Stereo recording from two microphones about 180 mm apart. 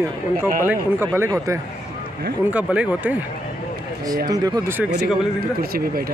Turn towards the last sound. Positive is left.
turn(degrees=-55)  # may be behind; listen again after turning